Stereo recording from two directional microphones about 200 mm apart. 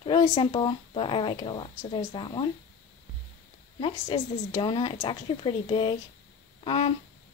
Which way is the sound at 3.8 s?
25° left (ahead or behind).